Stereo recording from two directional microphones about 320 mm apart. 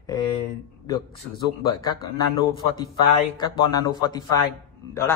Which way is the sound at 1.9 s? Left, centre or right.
Centre.